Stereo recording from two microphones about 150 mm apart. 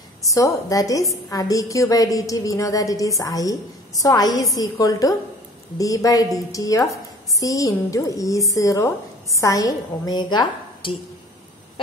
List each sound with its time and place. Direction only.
0.3 s a woman's voice: 20° left (ahead or behind)